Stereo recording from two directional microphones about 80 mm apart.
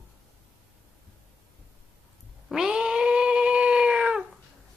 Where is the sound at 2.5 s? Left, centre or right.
Centre.